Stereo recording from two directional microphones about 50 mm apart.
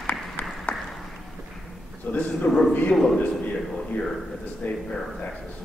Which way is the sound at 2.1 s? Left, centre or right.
Left.